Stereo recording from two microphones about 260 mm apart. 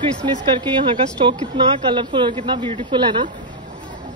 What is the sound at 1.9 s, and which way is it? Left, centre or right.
Speech, centre.